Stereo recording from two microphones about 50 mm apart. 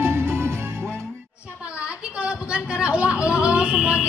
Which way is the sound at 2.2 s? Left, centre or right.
Right.